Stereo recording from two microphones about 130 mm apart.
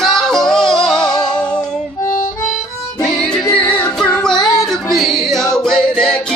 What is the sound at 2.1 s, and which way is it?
Harmonica, 80° left.